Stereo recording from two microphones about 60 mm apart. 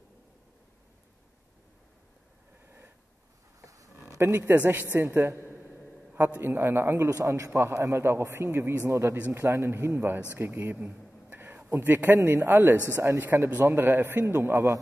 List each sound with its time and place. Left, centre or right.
3.6 s a sound: right
4.3 s a man's voice: right
7.2 s a man's voice: right